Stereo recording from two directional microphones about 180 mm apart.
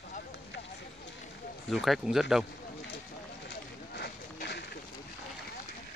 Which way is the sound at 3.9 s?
65° left (ahead or behind).